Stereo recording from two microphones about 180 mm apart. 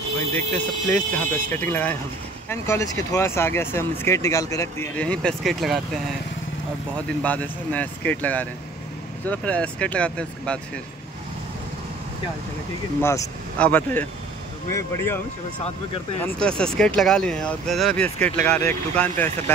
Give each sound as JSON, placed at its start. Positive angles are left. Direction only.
{"t": 0.3, "sound": "speech", "side_deg": 10}
{"t": 7.2, "sound": "speech", "side_deg": 10}
{"t": 13.0, "sound": "speech", "side_deg": 15}
{"t": 16.3, "sound": "speech", "side_deg": 5}